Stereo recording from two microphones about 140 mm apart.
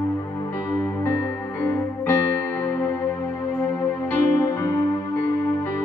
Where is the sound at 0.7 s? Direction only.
20° left (ahead or behind).